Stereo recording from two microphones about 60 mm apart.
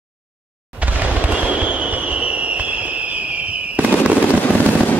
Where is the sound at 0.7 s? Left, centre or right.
Right.